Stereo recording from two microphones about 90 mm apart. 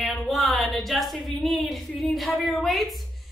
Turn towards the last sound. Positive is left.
turn(degrees=0)  # may be behind; listen again after turning